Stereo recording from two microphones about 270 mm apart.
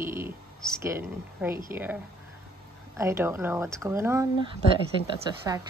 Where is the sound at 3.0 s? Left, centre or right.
Centre.